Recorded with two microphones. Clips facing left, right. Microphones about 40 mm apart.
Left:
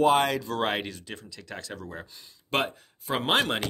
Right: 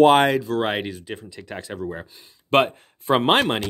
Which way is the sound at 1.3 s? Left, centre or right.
Right.